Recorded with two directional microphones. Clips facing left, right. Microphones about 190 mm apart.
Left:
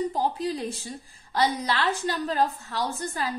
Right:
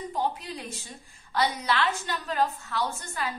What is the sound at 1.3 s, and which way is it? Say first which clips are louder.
A woman's voice: left 2 dB; 35° left (ahead or behind).